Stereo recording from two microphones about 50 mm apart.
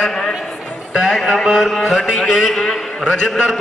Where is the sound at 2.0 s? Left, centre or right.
Centre.